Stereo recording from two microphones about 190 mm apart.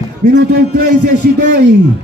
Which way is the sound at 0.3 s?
55° right (ahead or behind).